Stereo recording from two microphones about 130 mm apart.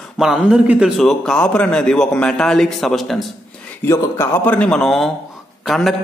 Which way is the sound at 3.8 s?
20° left (ahead or behind).